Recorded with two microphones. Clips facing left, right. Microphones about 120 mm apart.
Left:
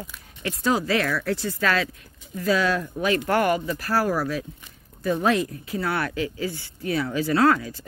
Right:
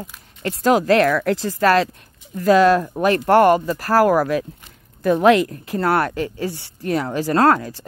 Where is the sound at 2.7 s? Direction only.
45° right (ahead or behind).